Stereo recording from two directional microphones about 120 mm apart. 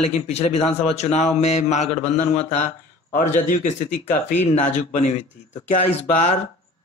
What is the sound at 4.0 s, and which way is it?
Speech, 20° left (ahead or behind).